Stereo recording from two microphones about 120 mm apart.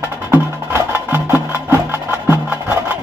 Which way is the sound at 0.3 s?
20° right (ahead or behind).